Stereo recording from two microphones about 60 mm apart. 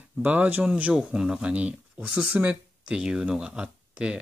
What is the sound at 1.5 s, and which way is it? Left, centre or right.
Speech, right.